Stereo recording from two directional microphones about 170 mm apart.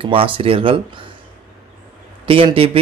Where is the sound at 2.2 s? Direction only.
30° right (ahead or behind).